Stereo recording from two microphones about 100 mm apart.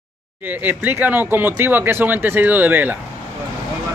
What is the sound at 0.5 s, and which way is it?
Speech, 20° right (ahead or behind).